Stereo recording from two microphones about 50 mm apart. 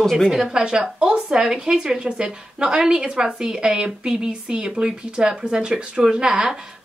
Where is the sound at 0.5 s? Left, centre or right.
Centre.